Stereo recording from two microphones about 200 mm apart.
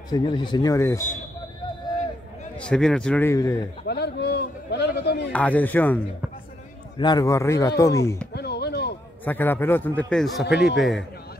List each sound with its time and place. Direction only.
0.1 s a man's voice: 20° left (ahead or behind)
2.5 s a man's voice: 5° left (ahead or behind)
3.8 s a man's voice: 55° left (ahead or behind)
5.3 s speech: 10° left (ahead or behind)
7.0 s speech: 20° left (ahead or behind)
8.4 s a sound: 55° left (ahead or behind)
9.2 s a man's voice: 10° left (ahead or behind)